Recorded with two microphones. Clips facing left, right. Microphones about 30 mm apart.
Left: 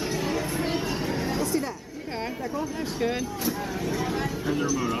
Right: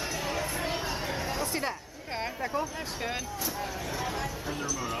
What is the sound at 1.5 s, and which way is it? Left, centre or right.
Chatter, right.